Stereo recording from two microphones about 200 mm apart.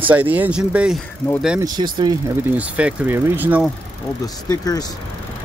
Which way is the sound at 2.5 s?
5° right (ahead or behind).